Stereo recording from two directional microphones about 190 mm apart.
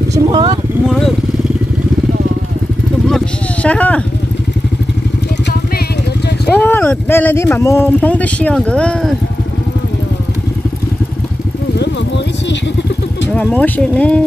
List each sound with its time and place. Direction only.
0.1 s vehicle: 25° right (ahead or behind)
0.8 s vehicle: centre (ahead or behind)
3.6 s speech: 5° left (ahead or behind)
6.6 s speech: 10° left (ahead or behind)
13.3 s speech: 5° left (ahead or behind)